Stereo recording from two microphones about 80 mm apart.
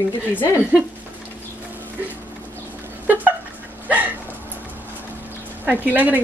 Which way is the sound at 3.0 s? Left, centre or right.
Right.